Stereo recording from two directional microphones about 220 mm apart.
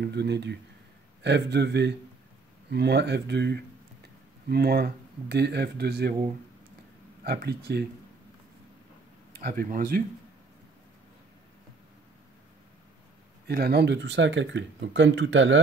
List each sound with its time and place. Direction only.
0.0 s speech: 50° right (ahead or behind)
7.2 s speech: 45° right (ahead or behind)
9.4 s speech: 40° right (ahead or behind)
13.5 s speech: 45° right (ahead or behind)